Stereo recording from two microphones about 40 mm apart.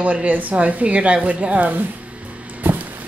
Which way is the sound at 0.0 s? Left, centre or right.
Right.